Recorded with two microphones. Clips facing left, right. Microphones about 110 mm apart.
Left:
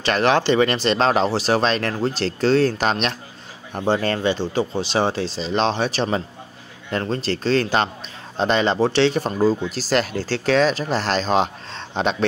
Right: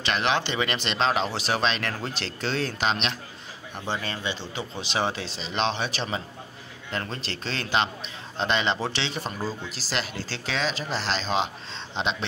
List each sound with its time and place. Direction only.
0.0 s speech: 40° left (ahead or behind)